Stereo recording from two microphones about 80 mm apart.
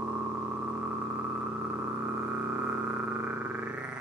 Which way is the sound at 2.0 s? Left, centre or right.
Right.